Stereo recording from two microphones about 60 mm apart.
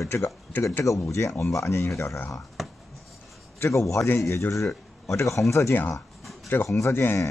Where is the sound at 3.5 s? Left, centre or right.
Left.